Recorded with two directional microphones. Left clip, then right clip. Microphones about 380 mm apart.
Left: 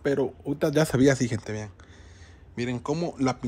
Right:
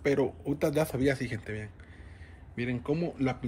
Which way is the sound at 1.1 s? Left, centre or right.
Left.